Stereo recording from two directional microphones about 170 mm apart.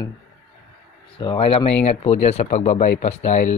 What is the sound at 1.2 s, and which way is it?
Speech, 30° left (ahead or behind).